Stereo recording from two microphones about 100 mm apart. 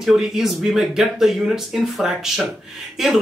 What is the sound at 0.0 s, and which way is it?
Speech, 5° right (ahead or behind).